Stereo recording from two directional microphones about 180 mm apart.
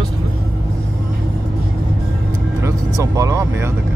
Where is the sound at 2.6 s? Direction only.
20° right (ahead or behind).